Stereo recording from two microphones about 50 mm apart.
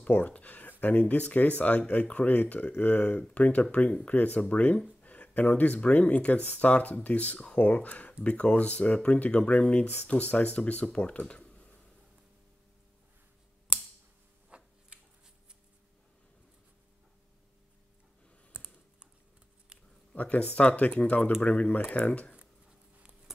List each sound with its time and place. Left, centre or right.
0.0 s speech: left
14.5 s a sound: right
18.5 s computer keyboard: right
20.2 s speech: left